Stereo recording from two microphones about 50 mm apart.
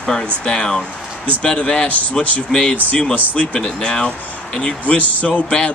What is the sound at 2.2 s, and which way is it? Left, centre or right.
Speech, centre.